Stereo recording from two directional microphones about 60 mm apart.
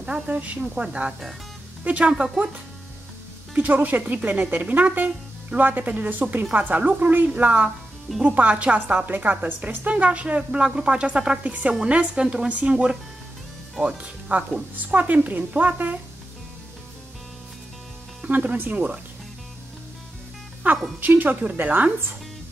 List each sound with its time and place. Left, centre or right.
0.3 s a woman's voice: right
1.9 s speech: centre
3.5 s a woman's voice: right
18.2 s a woman's voice: right
20.6 s a woman's voice: right